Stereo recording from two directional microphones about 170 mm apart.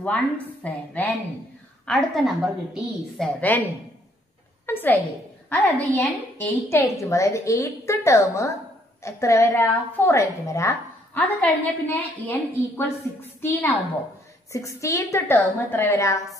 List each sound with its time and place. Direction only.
0.0 s a woman's voice: 10° left (ahead or behind)
4.6 s a woman's voice: 10° left (ahead or behind)